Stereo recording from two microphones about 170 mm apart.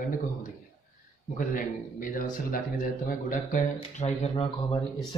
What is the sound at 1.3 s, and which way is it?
Speech, 55° left (ahead or behind).